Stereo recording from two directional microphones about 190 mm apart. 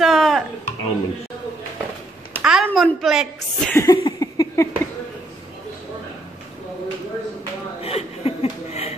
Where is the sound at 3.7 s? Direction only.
15° left (ahead or behind).